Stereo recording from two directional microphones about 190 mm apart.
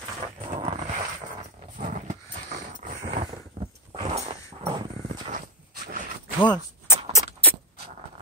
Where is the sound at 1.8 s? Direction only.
40° right (ahead or behind).